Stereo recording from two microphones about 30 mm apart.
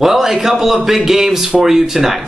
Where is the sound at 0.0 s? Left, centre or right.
Centre.